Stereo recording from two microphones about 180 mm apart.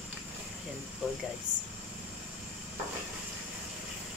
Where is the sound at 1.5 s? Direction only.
25° right (ahead or behind).